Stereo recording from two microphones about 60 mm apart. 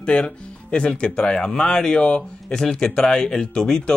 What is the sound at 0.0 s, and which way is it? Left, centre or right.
Speech, centre.